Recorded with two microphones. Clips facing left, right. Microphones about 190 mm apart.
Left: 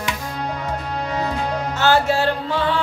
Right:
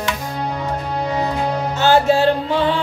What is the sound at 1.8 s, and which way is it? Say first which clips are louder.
Music: right 4 dB; 15° right (ahead or behind).